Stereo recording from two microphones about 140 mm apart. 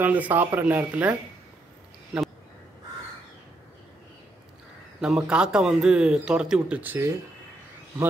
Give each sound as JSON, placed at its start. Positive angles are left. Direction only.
{"t": 0.0, "sound": "speech", "side_deg": -10}
{"t": 5.0, "sound": "speech", "side_deg": -5}